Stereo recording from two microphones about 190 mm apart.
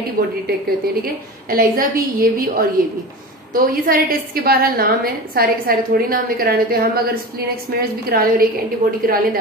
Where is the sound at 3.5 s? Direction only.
50° right (ahead or behind).